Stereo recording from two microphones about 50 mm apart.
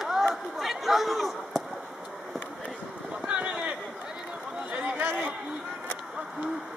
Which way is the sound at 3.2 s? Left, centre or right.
Centre.